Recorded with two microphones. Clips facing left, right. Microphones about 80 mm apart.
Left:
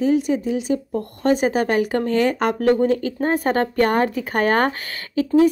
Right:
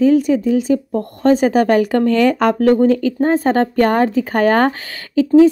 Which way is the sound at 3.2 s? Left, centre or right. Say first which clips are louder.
Right 5 dB; right.